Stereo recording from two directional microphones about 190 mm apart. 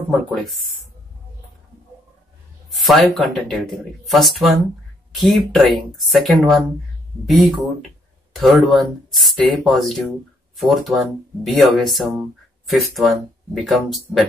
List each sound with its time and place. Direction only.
0.3 s speech: centre (ahead or behind)
2.7 s speech: centre (ahead or behind)